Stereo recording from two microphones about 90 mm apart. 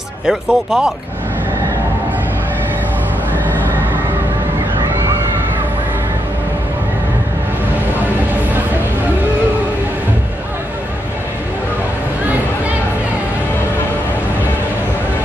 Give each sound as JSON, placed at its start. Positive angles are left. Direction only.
{"t": 0.3, "sound": "speech", "side_deg": -5}
{"t": 3.4, "sound": "neigh", "side_deg": 20}